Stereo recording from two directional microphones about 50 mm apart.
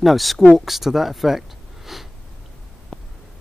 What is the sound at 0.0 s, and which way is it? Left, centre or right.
Speech, centre.